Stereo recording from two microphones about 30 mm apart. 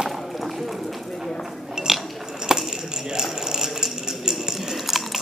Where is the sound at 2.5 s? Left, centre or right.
Right.